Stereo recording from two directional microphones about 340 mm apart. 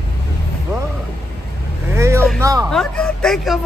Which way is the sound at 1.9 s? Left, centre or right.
Centre.